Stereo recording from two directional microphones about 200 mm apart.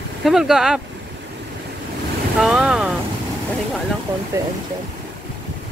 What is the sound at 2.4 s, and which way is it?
Boat, 5° right (ahead or behind).